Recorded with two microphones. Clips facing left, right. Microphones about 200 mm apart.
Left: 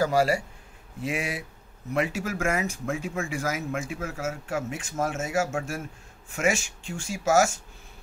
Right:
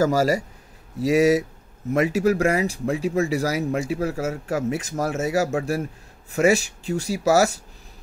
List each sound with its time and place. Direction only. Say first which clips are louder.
0.0 s speech: right 4 dB; 40° right (ahead or behind)